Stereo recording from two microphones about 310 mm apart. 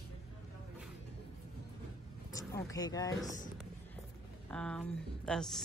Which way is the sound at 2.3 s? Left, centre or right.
Centre.